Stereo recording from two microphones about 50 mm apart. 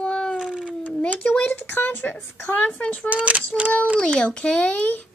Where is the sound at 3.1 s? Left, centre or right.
Right.